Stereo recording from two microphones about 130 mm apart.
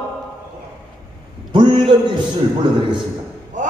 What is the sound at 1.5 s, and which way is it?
Speech, 40° right (ahead or behind).